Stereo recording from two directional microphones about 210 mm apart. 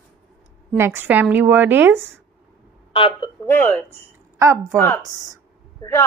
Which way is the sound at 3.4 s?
10° left (ahead or behind).